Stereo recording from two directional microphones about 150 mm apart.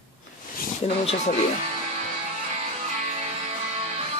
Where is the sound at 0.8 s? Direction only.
45° left (ahead or behind).